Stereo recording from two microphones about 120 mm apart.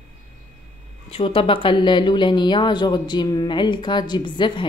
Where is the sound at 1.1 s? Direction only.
45° left (ahead or behind).